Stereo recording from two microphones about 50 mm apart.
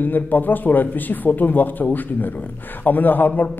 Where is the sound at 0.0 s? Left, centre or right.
Left.